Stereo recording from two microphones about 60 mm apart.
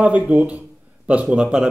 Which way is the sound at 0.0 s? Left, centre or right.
Right.